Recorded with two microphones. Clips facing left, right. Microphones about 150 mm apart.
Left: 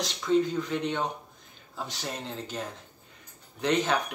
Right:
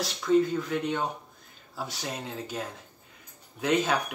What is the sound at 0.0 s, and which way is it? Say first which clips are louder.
Speech: right 2 dB; 5° right (ahead or behind).